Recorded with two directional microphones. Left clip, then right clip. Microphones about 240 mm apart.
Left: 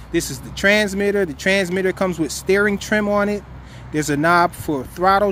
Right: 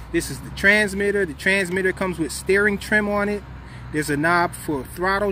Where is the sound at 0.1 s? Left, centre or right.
Centre.